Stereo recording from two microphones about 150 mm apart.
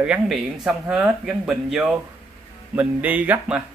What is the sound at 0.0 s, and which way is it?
A man's voice, 5° right (ahead or behind).